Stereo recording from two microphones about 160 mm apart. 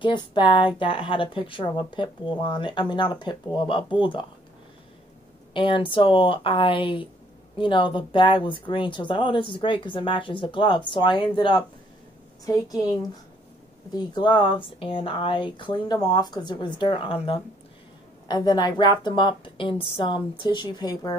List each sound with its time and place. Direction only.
0.0 s a woman's voice: 30° left (ahead or behind)
5.5 s a woman's voice: 30° left (ahead or behind)
18.3 s speech: 25° left (ahead or behind)